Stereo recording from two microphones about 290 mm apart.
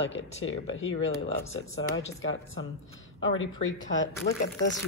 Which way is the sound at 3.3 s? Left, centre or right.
Left.